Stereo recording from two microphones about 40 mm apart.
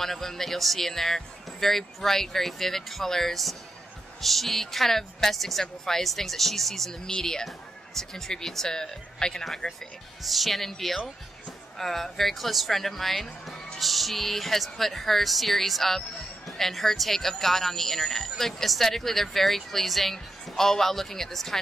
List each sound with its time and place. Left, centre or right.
0.0 s speech: centre
7.1 s speech: centre